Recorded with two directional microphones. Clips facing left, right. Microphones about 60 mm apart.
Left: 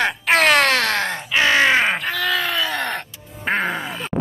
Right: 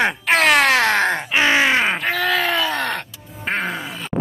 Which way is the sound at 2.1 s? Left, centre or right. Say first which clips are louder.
Right 2 dB; right.